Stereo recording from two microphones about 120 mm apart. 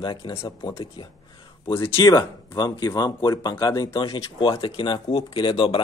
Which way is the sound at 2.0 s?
35° left (ahead or behind).